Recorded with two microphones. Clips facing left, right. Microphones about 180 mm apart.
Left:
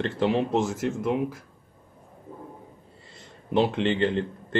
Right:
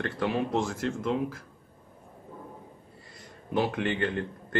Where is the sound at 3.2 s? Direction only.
25° left (ahead or behind).